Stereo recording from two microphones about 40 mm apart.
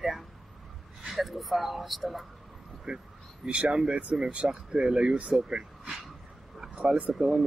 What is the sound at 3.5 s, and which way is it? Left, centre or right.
Speech, right.